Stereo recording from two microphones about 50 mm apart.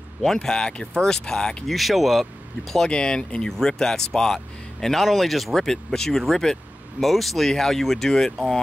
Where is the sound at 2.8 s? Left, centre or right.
Centre.